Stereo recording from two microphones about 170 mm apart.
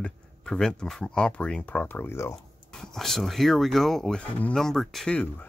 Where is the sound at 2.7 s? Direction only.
5° left (ahead or behind).